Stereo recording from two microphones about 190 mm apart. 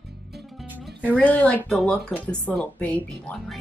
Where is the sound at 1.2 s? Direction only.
10° left (ahead or behind).